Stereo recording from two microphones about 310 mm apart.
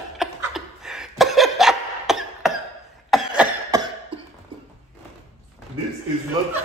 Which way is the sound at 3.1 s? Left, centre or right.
Centre.